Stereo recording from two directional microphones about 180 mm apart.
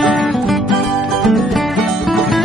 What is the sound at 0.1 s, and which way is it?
Music, centre (ahead or behind).